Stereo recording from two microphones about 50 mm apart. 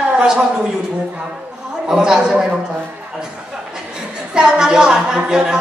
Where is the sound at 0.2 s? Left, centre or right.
Centre.